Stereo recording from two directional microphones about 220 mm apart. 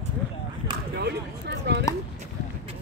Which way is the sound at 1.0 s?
50° right (ahead or behind).